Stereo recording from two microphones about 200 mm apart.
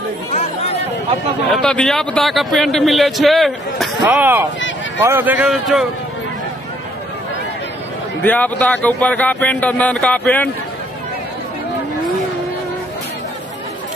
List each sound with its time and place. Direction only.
1.5 s a man's voice: 5° left (ahead or behind)
4.1 s speech: 10° right (ahead or behind)
4.6 s a sound: 70° left (ahead or behind)
5.0 s a man's voice: 10° right (ahead or behind)
8.2 s speech: 10° left (ahead or behind)